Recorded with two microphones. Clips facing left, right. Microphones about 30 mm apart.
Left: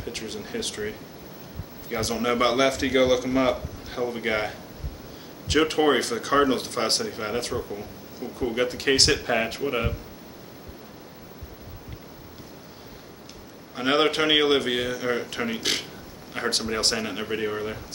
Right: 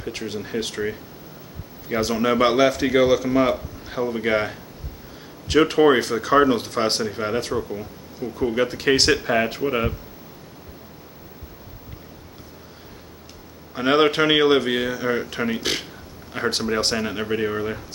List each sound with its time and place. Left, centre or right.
0.0 s speech: centre
13.7 s speech: centre